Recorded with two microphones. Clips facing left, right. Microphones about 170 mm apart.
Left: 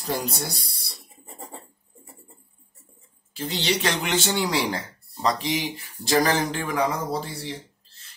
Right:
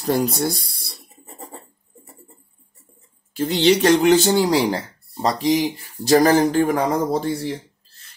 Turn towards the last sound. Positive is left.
turn(degrees=-50)  # may be behind; listen again after turning